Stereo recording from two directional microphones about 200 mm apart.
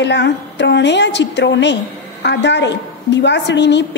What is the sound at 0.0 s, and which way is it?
A woman's voice, 60° left (ahead or behind).